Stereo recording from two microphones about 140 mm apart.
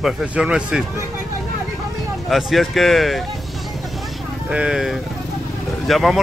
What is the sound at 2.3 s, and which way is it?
Speech, centre (ahead or behind).